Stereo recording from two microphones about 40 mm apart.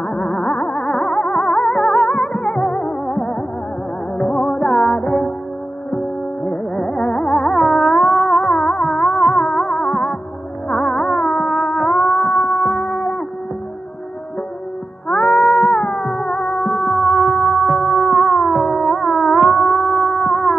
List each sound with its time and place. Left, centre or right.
0.0 s music: left
6.7 s music: centre
15.0 s music: left
15.3 s music: centre